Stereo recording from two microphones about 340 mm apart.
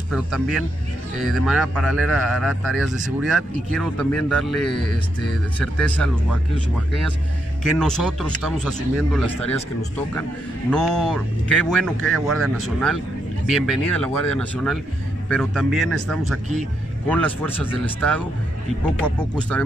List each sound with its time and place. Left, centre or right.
0.1 s a man's voice: centre
7.8 s a man's voice: centre
10.7 s a man's voice: centre